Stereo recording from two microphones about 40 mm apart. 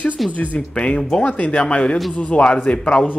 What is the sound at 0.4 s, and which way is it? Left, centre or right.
A man's voice, left.